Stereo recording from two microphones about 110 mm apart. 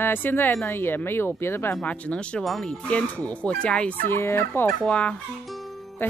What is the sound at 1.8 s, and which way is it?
Speech, 10° left (ahead or behind).